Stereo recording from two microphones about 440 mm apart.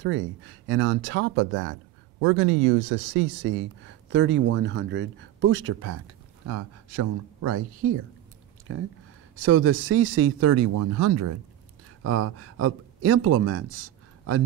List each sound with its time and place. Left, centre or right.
0.0 s speech: right